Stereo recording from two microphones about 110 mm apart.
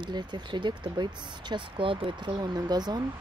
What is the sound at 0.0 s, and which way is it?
Speech, 40° right (ahead or behind).